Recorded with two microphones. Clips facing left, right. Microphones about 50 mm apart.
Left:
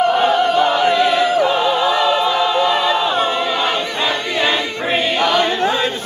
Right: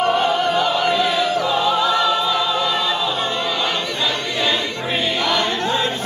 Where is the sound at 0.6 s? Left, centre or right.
Left.